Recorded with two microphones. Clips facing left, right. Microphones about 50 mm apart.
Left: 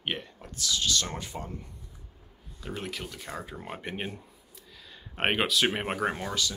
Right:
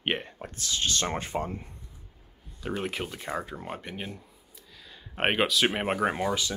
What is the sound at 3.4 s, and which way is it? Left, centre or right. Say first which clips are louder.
Speech: right 3 dB; centre.